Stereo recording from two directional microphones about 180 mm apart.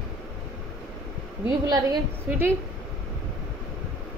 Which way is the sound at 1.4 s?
20° right (ahead or behind).